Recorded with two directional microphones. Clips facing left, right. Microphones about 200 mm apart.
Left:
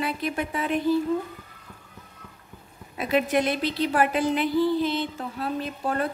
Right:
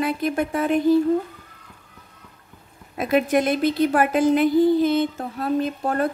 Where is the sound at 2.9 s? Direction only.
45° right (ahead or behind).